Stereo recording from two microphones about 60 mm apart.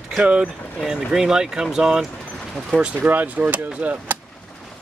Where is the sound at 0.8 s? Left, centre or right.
Centre.